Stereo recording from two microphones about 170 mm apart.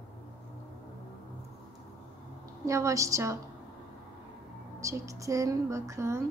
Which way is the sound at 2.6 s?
20° right (ahead or behind).